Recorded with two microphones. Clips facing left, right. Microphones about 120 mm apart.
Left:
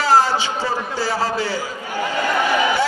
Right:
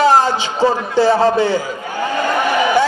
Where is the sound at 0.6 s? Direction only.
25° right (ahead or behind).